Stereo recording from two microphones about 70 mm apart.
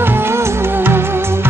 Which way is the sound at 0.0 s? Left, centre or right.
Right.